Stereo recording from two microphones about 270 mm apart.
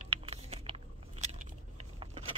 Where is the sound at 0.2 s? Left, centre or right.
Right.